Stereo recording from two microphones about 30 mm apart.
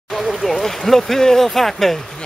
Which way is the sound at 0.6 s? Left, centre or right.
Centre.